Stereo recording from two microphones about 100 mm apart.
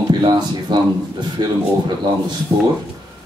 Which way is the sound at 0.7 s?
50° right (ahead or behind).